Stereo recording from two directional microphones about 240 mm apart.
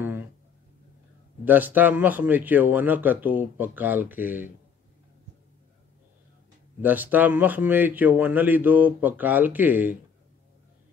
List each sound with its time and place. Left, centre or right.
1.4 s a man's voice: centre
6.8 s a man's voice: centre